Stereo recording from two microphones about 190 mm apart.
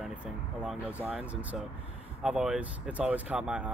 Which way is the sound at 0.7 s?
5° right (ahead or behind).